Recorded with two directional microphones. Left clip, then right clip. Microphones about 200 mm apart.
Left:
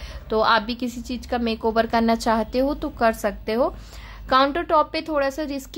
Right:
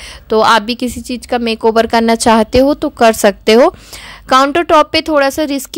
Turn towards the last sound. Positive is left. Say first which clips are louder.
# right 11 dB
turn(degrees=-40)  # may be behind; listen again after turning